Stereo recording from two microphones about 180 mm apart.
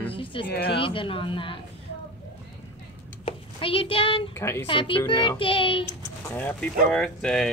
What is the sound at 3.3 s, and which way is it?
A child's voice, 30° left (ahead or behind).